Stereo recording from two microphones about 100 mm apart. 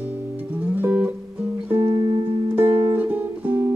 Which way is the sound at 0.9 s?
10° right (ahead or behind).